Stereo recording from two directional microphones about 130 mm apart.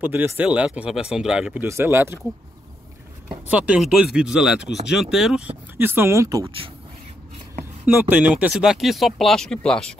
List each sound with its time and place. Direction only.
0.0 s speech: 15° right (ahead or behind)
3.3 s speech: 10° right (ahead or behind)
5.8 s speech: 15° right (ahead or behind)
7.8 s speech: 15° right (ahead or behind); by 9.9 s 5° left (ahead or behind)